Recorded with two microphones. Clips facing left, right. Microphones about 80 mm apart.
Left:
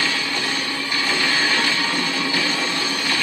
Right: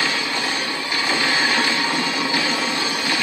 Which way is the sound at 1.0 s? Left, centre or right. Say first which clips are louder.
Right 1 dB; centre.